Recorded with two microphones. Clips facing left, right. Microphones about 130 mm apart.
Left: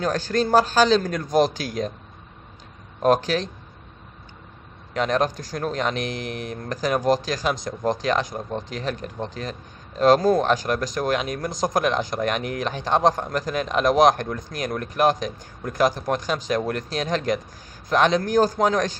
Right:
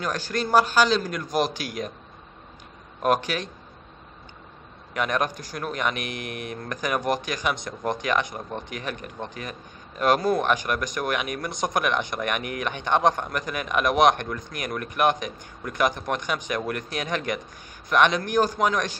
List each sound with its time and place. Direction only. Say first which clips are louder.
0.0 s speech: left 5 dB; 40° left (ahead or behind)
3.0 s speech: left 4 dB; 35° left (ahead or behind)
4.9 s a man's voice: left 4 dB; 30° left (ahead or behind)